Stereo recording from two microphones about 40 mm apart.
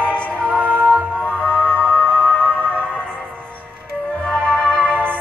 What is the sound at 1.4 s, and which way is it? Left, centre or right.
Music, left.